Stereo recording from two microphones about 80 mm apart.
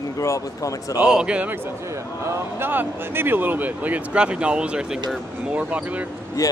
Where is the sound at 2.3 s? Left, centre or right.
Right.